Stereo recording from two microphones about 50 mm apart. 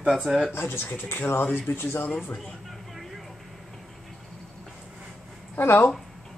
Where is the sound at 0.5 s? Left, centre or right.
Left.